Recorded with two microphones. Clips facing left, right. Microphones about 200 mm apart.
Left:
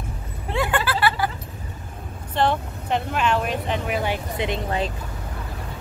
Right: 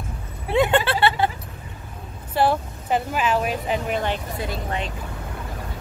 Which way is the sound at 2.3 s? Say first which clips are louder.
Right 1 dB; 5° right (ahead or behind).